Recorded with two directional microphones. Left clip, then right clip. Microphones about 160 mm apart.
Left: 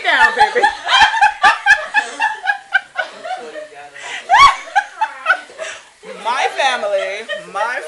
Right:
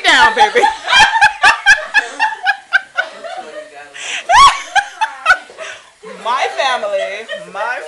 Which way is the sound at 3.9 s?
30° right (ahead or behind).